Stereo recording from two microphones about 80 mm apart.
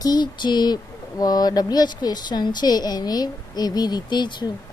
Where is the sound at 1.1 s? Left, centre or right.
Left.